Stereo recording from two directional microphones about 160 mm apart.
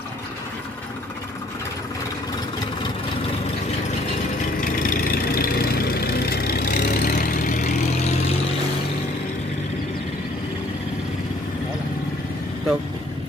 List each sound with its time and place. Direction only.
4.6 s vehicle: 60° left (ahead or behind)